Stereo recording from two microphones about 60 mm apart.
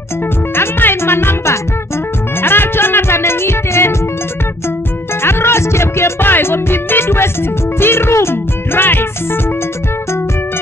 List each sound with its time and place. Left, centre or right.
0.6 s music: left
5.2 s music: left
7.8 s speech: left